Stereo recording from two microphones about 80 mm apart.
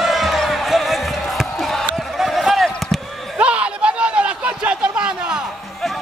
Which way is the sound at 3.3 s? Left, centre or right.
Centre.